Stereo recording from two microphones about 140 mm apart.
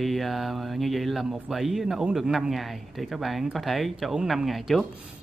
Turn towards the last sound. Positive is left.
turn(degrees=0)  # may be behind; listen again after turning